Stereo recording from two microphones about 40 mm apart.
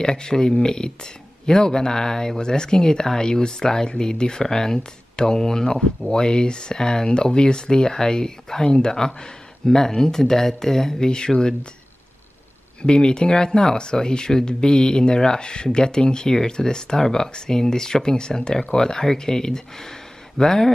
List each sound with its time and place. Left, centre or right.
0.0 s speech: centre
12.8 s speech: left